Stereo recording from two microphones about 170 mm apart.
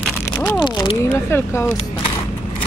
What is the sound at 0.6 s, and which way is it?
Speech, 25° left (ahead or behind).